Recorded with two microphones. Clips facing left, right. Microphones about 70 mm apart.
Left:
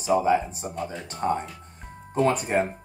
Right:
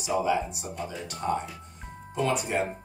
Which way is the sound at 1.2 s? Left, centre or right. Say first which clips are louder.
Left 3 dB; left.